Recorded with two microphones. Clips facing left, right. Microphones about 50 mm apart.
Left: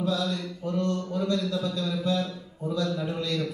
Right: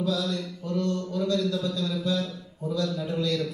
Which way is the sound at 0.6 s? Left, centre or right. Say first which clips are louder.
Left 1 dB; left.